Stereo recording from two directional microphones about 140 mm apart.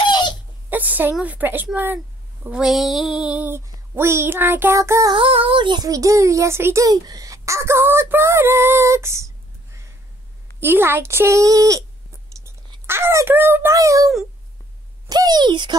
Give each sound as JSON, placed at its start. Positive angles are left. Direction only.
{"t": 0.0, "sound": "a sound", "side_deg": 35}
{"t": 0.7, "sound": "a sound", "side_deg": -10}
{"t": 1.1, "sound": "child singing", "side_deg": -10}
{"t": 2.4, "sound": "speech", "side_deg": -5}
{"t": 3.3, "sound": "child singing", "side_deg": -15}
{"t": 5.1, "sound": "a child's voice", "side_deg": -40}
{"t": 10.6, "sound": "child singing", "side_deg": -15}
{"t": 12.4, "sound": "a child's voice", "side_deg": -15}